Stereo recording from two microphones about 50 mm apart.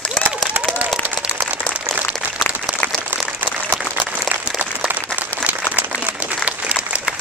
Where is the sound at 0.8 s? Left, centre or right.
Right.